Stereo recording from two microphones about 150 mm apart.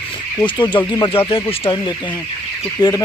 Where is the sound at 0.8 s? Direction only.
30° left (ahead or behind).